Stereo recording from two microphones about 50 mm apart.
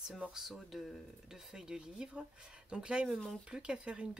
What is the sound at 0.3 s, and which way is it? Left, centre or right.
Speech, centre.